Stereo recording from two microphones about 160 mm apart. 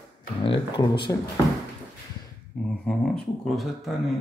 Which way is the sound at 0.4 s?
30° left (ahead or behind).